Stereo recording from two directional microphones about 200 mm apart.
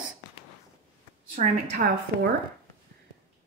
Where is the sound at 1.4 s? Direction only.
35° right (ahead or behind).